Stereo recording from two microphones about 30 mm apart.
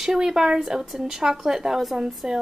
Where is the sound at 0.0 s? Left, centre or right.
Centre.